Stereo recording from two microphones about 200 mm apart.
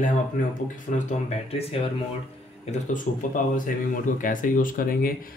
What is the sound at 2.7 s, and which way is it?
Speech, 40° left (ahead or behind).